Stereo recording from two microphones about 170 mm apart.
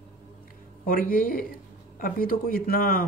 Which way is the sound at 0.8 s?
55° left (ahead or behind).